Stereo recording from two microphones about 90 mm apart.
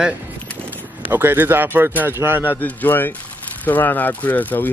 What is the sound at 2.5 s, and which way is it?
Speech, 20° left (ahead or behind).